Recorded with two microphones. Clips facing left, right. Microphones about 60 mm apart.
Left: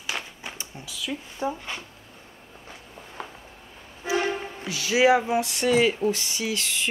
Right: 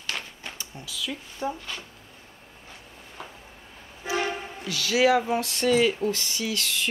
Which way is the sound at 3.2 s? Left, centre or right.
Left.